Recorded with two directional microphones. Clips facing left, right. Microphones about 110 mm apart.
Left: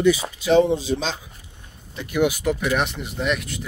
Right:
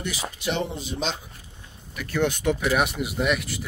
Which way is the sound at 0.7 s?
90° left.